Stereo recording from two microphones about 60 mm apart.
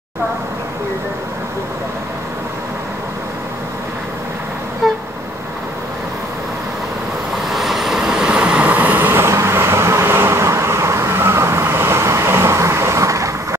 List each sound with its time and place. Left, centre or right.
4.8 s vehicle: centre
7.4 s vehicle: centre; by 13.6 s right